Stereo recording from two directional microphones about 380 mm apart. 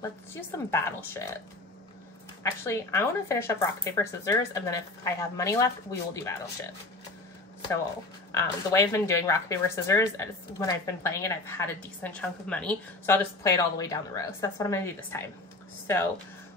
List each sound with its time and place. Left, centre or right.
0.3 s speech: centre
2.6 s speech: centre
8.3 s speech: centre